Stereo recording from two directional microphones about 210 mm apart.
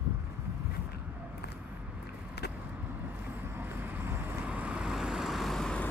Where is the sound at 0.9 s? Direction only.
50° left (ahead or behind).